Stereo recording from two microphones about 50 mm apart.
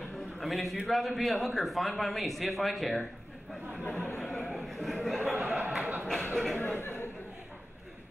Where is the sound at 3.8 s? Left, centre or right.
Left.